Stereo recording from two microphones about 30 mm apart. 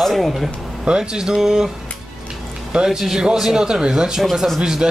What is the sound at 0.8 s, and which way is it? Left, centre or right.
Speech, right.